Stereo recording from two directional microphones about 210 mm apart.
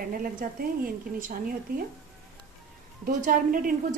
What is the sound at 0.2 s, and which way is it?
A woman's voice, 45° right (ahead or behind).